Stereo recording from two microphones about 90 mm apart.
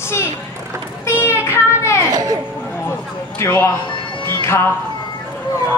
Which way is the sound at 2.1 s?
45° right (ahead or behind).